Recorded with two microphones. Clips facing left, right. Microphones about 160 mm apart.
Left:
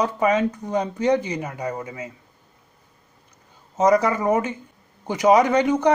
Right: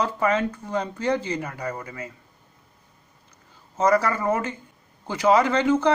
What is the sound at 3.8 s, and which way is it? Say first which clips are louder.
Speech: left 3 dB; 20° left (ahead or behind).